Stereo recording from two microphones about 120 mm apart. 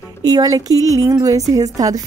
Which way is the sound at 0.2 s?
35° right (ahead or behind).